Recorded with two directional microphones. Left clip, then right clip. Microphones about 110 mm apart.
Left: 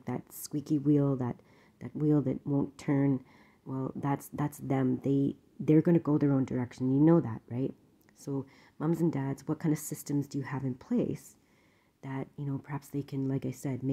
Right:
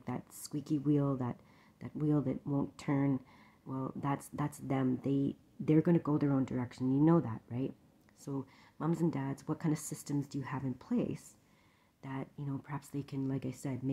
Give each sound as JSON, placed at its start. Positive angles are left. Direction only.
{"t": 0.0, "sound": "speech", "side_deg": 30}
{"t": 2.4, "sound": "a woman's voice", "side_deg": 20}